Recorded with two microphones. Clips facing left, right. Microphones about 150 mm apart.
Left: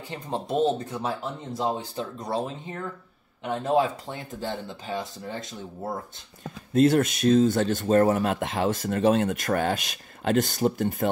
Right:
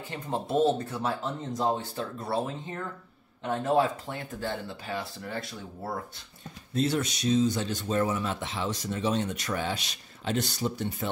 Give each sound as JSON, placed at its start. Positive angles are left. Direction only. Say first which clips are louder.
{"t": 0.1, "sound": "speech", "louder": "left 1 dB", "side_deg": 20}
{"t": 6.4, "sound": "speech", "louder": "left 8 dB", "side_deg": 50}